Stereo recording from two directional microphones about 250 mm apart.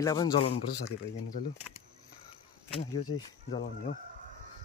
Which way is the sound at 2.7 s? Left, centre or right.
Left.